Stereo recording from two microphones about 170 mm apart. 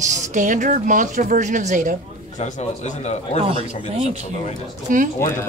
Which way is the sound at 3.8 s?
40° right (ahead or behind).